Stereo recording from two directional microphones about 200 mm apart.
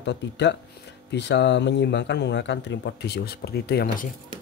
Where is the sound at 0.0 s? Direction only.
60° left (ahead or behind).